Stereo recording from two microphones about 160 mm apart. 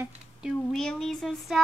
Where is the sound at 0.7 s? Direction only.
5° left (ahead or behind).